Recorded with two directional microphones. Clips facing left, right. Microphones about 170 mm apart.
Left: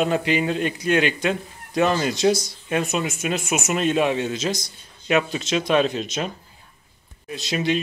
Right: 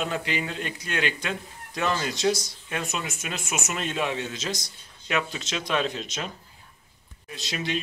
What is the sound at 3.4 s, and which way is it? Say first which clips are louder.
Speech: left 7 dB; 70° left (ahead or behind).